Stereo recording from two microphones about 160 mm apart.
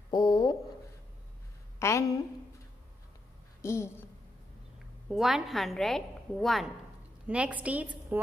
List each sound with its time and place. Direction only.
0.1 s speech: 25° left (ahead or behind)
1.8 s a woman's voice: 20° left (ahead or behind)
3.6 s a woman's voice: 15° left (ahead or behind)
5.1 s a woman's voice: centre (ahead or behind)